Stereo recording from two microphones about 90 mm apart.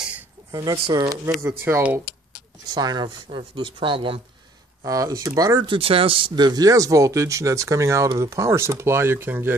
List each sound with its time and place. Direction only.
0.5 s speech: 45° right (ahead or behind); by 1.8 s 25° right (ahead or behind)
2.7 s speech: 50° right (ahead or behind); by 4.2 s 70° right (ahead or behind)
4.8 s speech: 40° right (ahead or behind)
5.7 s speech: 90° right; by 9.6 s 25° right (ahead or behind)